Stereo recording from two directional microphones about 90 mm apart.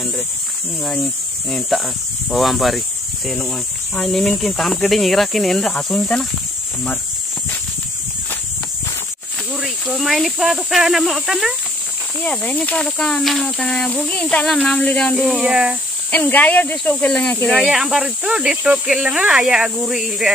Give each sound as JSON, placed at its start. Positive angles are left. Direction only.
{"t": 0.8, "sound": "speech", "side_deg": 5}
{"t": 9.5, "sound": "speech", "side_deg": -5}
{"t": 12.2, "sound": "speech", "side_deg": 10}
{"t": 13.8, "sound": "speech", "side_deg": 15}
{"t": 15.1, "sound": "speech", "side_deg": -5}
{"t": 16.1, "sound": "speech", "side_deg": 20}
{"t": 17.7, "sound": "speech", "side_deg": -5}